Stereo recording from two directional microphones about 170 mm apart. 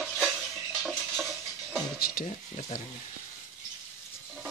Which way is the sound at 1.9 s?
60° left (ahead or behind).